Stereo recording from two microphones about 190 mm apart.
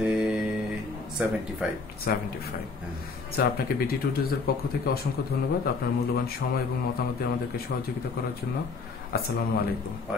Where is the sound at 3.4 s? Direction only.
50° left (ahead or behind).